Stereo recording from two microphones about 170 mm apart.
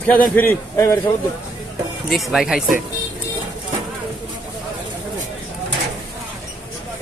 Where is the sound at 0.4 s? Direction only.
15° left (ahead or behind).